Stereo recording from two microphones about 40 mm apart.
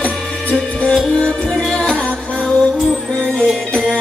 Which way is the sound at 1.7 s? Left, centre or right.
Centre.